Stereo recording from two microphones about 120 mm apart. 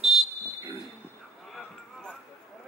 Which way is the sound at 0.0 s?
Centre (ahead or behind).